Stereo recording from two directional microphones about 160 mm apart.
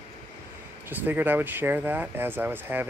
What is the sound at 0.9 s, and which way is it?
Speech, 10° right (ahead or behind).